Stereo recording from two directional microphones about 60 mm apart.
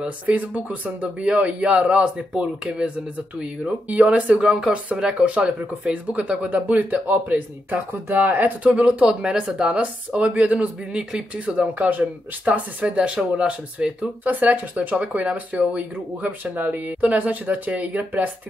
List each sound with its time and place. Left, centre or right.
0.0 s speech: right
8.6 s speech: centre